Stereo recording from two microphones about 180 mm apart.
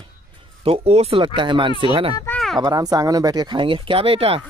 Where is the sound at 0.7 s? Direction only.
35° right (ahead or behind).